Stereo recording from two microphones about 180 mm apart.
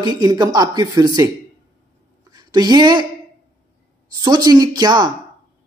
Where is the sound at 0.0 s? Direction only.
20° right (ahead or behind).